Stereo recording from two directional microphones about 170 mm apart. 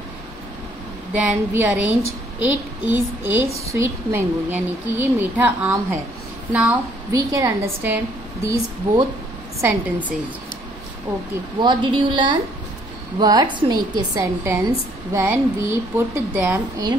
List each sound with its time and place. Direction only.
1.1 s a woman's voice: 10° right (ahead or behind)
7.1 s a woman's voice: 20° right (ahead or behind)
11.6 s a woman's voice: 25° right (ahead or behind)